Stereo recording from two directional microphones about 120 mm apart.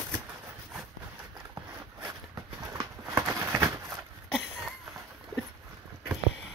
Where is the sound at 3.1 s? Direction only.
20° right (ahead or behind).